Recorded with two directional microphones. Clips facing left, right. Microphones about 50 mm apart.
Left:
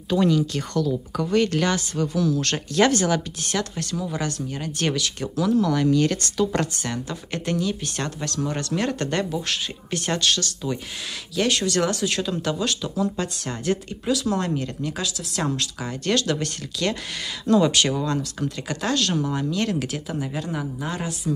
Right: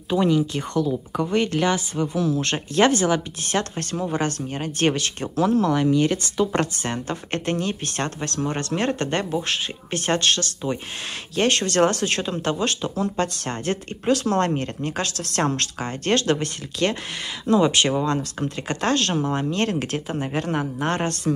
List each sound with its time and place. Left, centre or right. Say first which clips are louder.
0.1 s speech: even; right
5.7 s speech: right 1 dB; right